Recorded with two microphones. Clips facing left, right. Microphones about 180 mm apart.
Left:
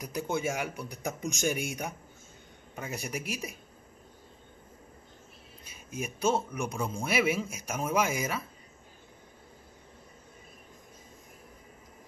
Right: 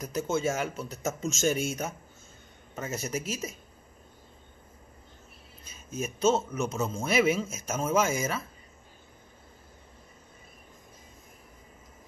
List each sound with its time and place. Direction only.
0.0 s a man's voice: 15° left (ahead or behind)
5.7 s a man's voice: 15° left (ahead or behind)